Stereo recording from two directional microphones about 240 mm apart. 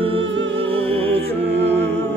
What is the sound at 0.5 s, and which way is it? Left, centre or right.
Music, right.